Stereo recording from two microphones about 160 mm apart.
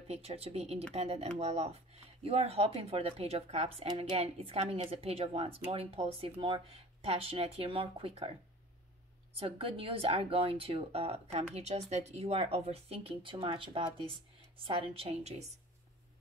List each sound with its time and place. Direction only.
0.1 s a woman's voice: 40° right (ahead or behind)
9.4 s a woman's voice: 35° right (ahead or behind)